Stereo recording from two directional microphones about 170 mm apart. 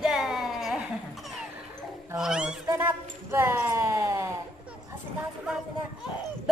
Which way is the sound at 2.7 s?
15° right (ahead or behind).